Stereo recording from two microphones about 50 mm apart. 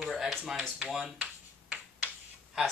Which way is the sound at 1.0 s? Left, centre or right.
Right.